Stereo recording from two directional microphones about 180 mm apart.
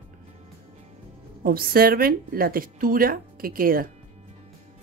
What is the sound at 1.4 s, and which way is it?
A woman's voice, 55° right (ahead or behind).